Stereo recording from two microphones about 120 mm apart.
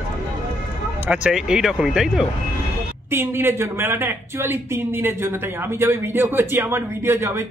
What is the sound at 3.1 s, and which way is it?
Speech, 20° right (ahead or behind).